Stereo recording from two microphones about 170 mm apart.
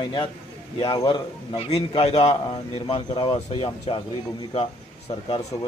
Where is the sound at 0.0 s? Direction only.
25° left (ahead or behind).